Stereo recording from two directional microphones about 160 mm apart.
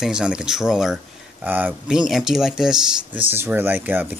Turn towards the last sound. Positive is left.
turn(degrees=-10)  # may be behind; listen again after turning